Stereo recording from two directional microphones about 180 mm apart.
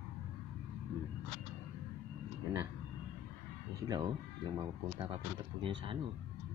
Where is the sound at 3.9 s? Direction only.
25° right (ahead or behind).